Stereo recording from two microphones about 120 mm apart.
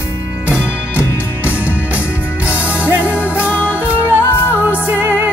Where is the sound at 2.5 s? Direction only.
20° left (ahead or behind).